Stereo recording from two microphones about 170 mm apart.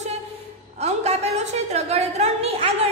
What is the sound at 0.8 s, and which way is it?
A woman's voice, 40° right (ahead or behind).